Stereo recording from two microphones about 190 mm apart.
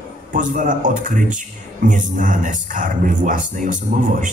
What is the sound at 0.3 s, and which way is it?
Speech, 40° right (ahead or behind).